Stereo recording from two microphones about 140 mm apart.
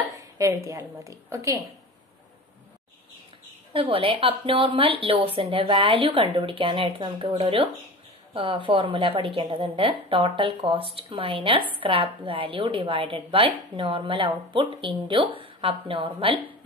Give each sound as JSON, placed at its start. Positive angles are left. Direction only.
{"t": 0.2, "sound": "a woman's voice", "side_deg": -25}
{"t": 3.7, "sound": "a woman's voice", "side_deg": -40}